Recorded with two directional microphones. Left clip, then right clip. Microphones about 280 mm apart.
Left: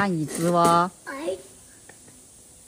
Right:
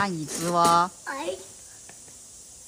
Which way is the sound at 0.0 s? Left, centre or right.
Centre.